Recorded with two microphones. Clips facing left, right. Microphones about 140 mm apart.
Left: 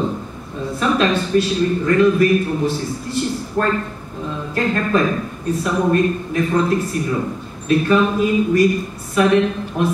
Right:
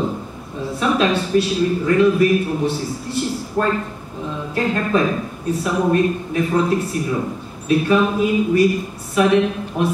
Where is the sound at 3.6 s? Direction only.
10° right (ahead or behind).